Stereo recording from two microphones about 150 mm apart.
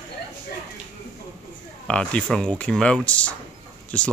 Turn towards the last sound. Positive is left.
turn(degrees=10)  # may be behind; listen again after turning